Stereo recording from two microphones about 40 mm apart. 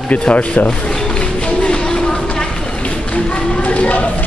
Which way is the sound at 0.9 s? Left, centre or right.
Left.